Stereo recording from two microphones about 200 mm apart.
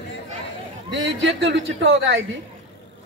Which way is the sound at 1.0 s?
70° right (ahead or behind).